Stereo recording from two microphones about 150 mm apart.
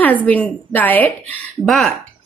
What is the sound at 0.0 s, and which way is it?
A woman's voice, 10° left (ahead or behind).